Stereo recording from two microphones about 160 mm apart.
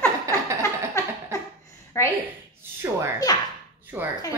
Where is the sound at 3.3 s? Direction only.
25° left (ahead or behind).